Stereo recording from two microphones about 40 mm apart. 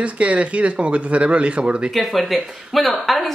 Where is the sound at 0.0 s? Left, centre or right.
Right.